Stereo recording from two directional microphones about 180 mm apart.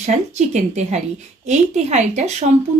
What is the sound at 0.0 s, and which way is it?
A woman's voice, 40° right (ahead or behind).